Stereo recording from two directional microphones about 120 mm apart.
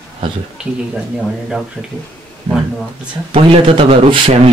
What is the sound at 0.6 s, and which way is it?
Speech, 10° right (ahead or behind).